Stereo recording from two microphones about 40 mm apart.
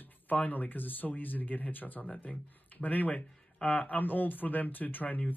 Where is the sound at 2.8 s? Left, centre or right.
Left.